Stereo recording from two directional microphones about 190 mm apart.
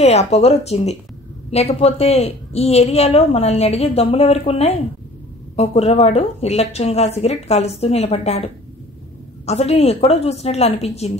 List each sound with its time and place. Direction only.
0.0 s a woman's voice: 35° left (ahead or behind)
9.5 s a woman's voice: 35° left (ahead or behind)